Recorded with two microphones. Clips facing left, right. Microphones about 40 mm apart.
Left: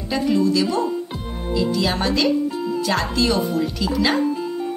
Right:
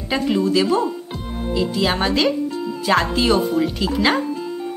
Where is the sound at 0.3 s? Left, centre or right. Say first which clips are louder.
Right 1 dB; right.